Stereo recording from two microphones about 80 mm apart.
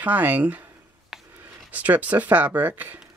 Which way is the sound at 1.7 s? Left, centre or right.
Centre.